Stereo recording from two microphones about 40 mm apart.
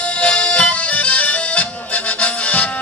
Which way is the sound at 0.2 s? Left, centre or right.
Left.